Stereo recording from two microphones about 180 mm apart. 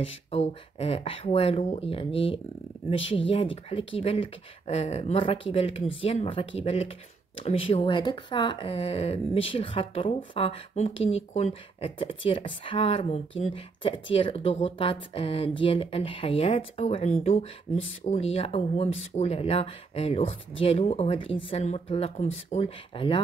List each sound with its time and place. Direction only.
0.0 s speech: 35° left (ahead or behind)